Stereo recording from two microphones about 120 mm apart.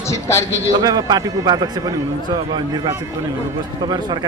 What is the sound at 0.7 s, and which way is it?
Speech, 35° right (ahead or behind).